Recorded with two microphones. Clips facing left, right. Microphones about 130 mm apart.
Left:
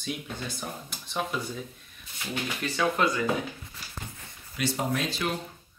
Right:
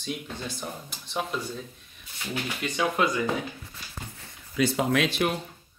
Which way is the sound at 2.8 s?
15° right (ahead or behind).